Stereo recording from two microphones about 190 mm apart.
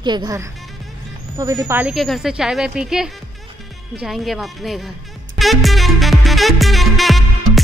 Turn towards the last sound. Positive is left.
turn(degrees=0)  # may be behind; listen again after turning